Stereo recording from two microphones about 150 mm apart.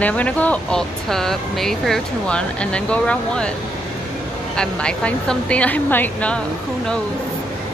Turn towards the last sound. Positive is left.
turn(degrees=10)  # may be behind; listen again after turning